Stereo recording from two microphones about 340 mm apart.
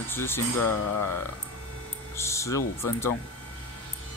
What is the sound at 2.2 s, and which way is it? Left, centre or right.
Speech, centre.